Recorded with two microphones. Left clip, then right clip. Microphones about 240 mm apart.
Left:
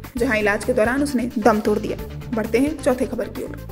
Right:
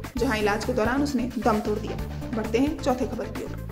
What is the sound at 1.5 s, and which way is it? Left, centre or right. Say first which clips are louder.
A woman's voice: left 8 dB; left.